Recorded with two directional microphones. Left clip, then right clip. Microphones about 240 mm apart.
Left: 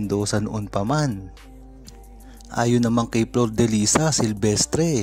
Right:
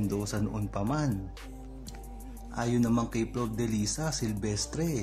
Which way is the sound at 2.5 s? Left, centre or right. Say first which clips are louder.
Left 9 dB; left.